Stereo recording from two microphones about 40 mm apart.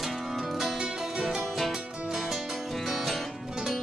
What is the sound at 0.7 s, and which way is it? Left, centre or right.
Music, centre.